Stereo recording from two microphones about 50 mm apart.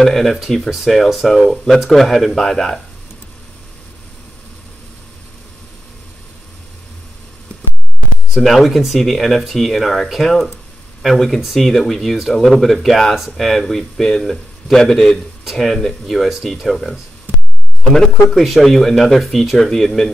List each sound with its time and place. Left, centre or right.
0.0 s speech: centre
8.3 s speech: centre
17.9 s speech: centre